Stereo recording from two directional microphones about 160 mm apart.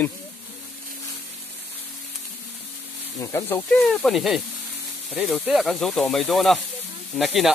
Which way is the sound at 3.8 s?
Centre (ahead or behind).